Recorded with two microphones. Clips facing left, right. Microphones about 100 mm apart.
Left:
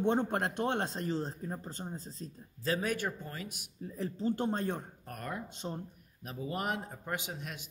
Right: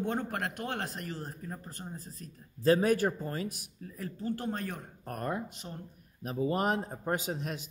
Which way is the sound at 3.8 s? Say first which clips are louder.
Left 3 dB; 25° left (ahead or behind).